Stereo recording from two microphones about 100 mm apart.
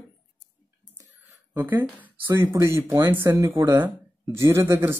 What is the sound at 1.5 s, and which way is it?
Speech, 20° right (ahead or behind).